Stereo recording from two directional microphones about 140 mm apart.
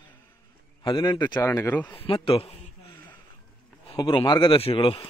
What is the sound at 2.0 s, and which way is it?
Speech, 40° left (ahead or behind).